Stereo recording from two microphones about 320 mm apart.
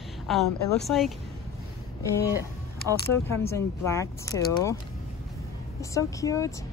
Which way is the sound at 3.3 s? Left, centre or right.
Centre.